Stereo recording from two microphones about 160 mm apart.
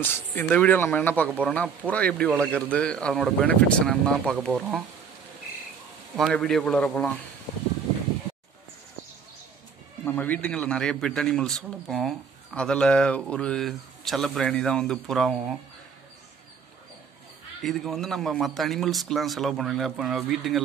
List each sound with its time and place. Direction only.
0.1 s a man's voice: 15° left (ahead or behind); by 4.8 s 5° right (ahead or behind)
6.1 s a man's voice: centre (ahead or behind)
10.0 s a man's voice: 10° left (ahead or behind)
17.6 s a man's voice: centre (ahead or behind)